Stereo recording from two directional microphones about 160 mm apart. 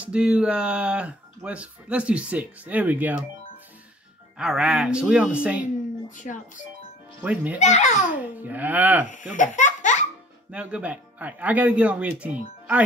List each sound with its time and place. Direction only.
0.0 s speech: 5° right (ahead or behind)
4.4 s speech: 5° right (ahead or behind)
6.0 s speech: 50° left (ahead or behind)
7.2 s speech: 10° right (ahead or behind)
7.5 s speech: 45° left (ahead or behind)
8.4 s speech: 10° right (ahead or behind)
9.1 s speech: 55° left (ahead or behind)
10.5 s speech: 10° right (ahead or behind)